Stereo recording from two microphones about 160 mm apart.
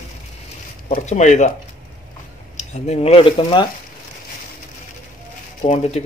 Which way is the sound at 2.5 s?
45° left (ahead or behind).